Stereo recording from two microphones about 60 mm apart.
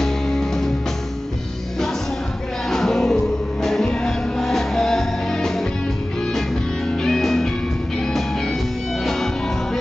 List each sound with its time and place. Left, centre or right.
0.0 s music: centre
2.7 s music: centre
6.9 s music: centre